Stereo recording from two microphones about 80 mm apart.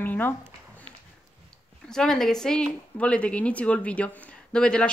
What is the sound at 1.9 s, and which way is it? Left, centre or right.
A woman's voice, centre.